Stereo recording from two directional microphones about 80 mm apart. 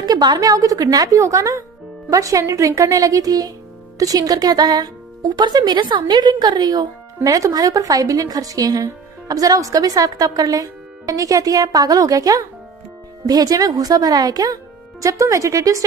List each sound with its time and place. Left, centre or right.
0.0 s a sound: right
0.4 s speech: right
7.2 s speech: right